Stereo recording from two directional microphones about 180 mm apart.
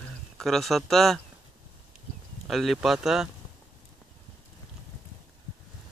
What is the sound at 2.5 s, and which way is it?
Speech, centre (ahead or behind).